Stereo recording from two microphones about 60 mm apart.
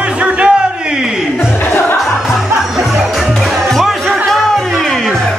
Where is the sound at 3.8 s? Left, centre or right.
Centre.